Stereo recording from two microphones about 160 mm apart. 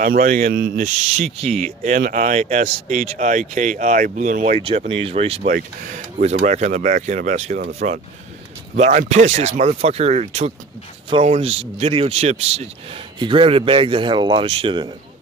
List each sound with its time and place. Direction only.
0.0 s speech: 60° right (ahead or behind)
2.0 s speech: 60° right (ahead or behind)
4.6 s speech: 35° right (ahead or behind)